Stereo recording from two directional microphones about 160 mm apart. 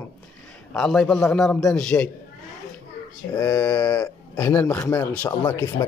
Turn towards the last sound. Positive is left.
turn(degrees=20)  # may be behind; listen again after turning